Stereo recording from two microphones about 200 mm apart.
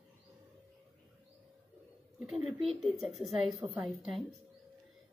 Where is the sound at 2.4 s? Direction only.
30° right (ahead or behind).